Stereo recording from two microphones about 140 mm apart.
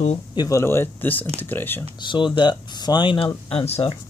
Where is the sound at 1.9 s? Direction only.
35° left (ahead or behind).